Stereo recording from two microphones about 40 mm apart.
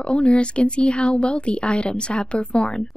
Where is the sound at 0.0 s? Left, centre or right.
Left.